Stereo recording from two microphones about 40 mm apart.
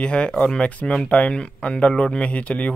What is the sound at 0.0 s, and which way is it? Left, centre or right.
Speech, left.